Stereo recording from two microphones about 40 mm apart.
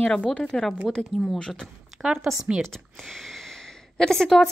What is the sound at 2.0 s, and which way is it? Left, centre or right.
Speech, centre.